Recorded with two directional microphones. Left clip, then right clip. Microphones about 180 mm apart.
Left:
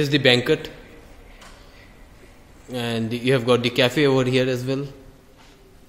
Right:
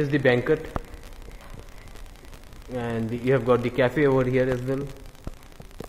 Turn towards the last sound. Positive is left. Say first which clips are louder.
# left 2 dB
turn(degrees=20)  # may be behind; listen again after turning